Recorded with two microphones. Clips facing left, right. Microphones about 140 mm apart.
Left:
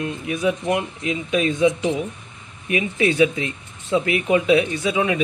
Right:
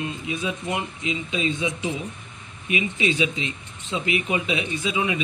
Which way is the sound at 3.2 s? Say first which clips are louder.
Left 7 dB; 50° left (ahead or behind).